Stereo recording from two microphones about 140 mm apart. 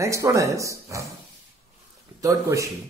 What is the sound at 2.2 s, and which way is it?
Speech, 25° right (ahead or behind).